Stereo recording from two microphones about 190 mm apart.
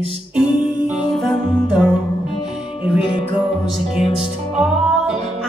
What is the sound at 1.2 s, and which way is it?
Music, centre (ahead or behind).